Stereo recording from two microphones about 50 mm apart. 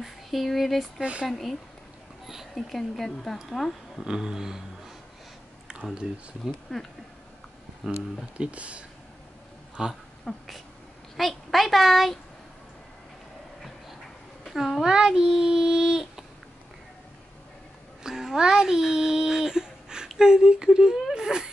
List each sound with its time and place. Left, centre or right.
0.0 s a woman's voice: centre
4.0 s speech: centre
5.7 s a sound: centre
6.4 s a woman's voice: centre
8.4 s speech: right
9.8 s speech: centre
10.3 s speech: centre
11.1 s a woman's voice: centre
14.4 s a child's voice: centre
18.0 s a child's voice: centre